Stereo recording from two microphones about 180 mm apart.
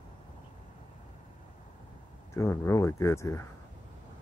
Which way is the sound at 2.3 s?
15° left (ahead or behind).